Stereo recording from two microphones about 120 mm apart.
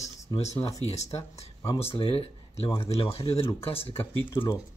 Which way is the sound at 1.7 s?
55° left (ahead or behind).